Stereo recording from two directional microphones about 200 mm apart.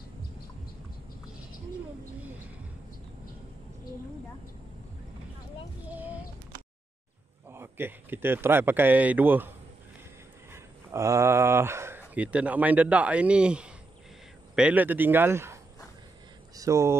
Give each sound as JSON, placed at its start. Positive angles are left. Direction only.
{"t": 5.9, "sound": "a sound", "side_deg": -10}
{"t": 7.5, "sound": "speech", "side_deg": -10}
{"t": 10.5, "sound": "speech", "side_deg": -15}